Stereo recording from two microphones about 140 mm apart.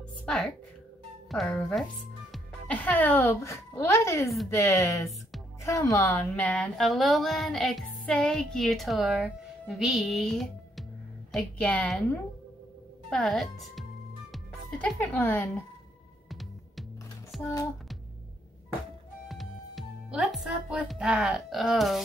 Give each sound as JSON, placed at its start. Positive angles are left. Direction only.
{"t": 0.2, "sound": "music", "side_deg": 5}
{"t": 1.3, "sound": "a woman's voice", "side_deg": 5}
{"t": 14.3, "sound": "music", "side_deg": 0}
{"t": 15.0, "sound": "a woman's voice", "side_deg": 15}
{"t": 16.3, "sound": "music", "side_deg": 0}
{"t": 17.3, "sound": "speech", "side_deg": 0}
{"t": 19.2, "sound": "speech", "side_deg": 0}